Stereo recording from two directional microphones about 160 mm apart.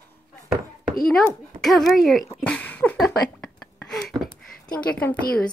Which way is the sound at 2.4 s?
10° left (ahead or behind).